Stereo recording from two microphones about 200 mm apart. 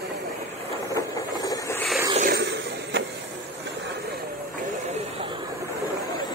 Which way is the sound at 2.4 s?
60° right (ahead or behind).